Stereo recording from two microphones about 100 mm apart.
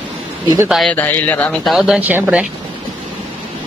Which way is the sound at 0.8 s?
15° left (ahead or behind).